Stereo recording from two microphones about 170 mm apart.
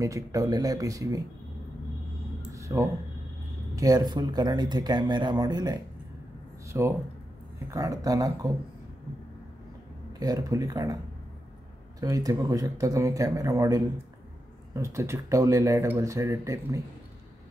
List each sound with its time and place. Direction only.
0.0 s speech: 20° right (ahead or behind)
2.5 s a sound: 20° right (ahead or behind)
3.7 s speech: 20° right (ahead or behind)
10.1 s speech: 20° right (ahead or behind)
12.0 s speech: 20° right (ahead or behind)